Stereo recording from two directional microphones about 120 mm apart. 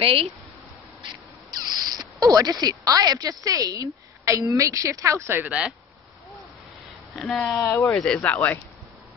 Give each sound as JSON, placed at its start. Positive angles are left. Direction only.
{"t": 0.0, "sound": "speech", "side_deg": -50}
{"t": 1.0, "sound": "speech", "side_deg": -35}
{"t": 7.6, "sound": "speech", "side_deg": 25}
{"t": 7.9, "sound": "speech", "side_deg": 5}